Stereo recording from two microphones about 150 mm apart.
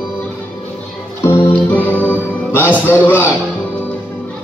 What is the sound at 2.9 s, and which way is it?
Speech, 10° left (ahead or behind).